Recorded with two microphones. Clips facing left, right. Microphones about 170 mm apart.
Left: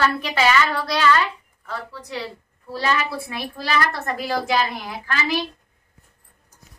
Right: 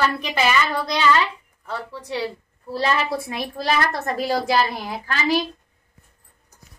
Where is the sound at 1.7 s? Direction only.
30° right (ahead or behind).